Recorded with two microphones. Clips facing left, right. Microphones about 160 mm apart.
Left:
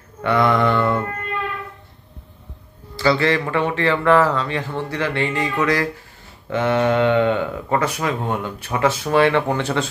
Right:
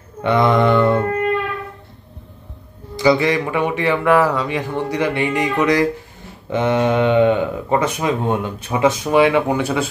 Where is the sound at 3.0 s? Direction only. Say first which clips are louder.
Right 3 dB; 15° right (ahead or behind).